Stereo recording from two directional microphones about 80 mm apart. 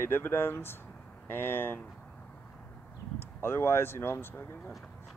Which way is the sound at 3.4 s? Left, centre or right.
Left.